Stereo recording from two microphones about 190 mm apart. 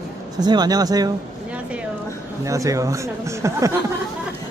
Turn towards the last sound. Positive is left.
turn(degrees=-15)  # may be behind; listen again after turning